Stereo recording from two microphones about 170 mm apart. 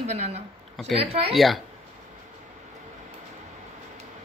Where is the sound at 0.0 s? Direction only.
40° right (ahead or behind).